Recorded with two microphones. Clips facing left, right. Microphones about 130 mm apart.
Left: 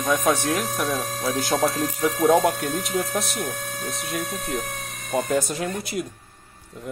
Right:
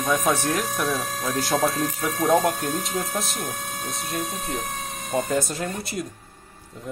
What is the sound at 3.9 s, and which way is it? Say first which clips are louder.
Speech: left 1 dB; centre (ahead or behind).